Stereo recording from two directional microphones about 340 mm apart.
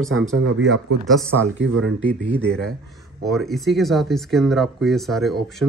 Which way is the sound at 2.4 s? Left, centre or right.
Centre.